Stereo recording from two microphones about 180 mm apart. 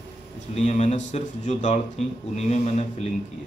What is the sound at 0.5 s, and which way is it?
Speech, 40° left (ahead or behind).